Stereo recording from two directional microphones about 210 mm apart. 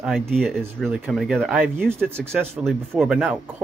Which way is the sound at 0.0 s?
Centre (ahead or behind).